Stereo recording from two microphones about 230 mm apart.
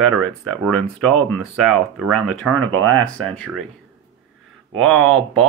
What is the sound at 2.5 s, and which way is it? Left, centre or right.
Speech, right.